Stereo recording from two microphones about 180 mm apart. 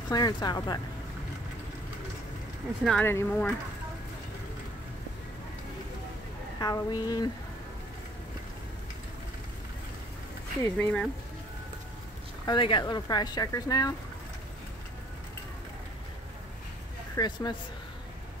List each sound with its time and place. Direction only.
0.1 s speech: 20° left (ahead or behind)
2.8 s speech: 5° left (ahead or behind)
6.6 s speech: 20° left (ahead or behind)
10.6 s speech: 10° left (ahead or behind)
12.4 s speech: 25° left (ahead or behind)
17.1 s speech: 20° left (ahead or behind)